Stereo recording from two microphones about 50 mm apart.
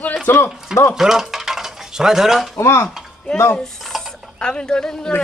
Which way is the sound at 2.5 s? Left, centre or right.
Left.